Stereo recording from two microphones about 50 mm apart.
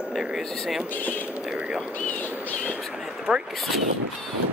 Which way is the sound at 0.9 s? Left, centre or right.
Left.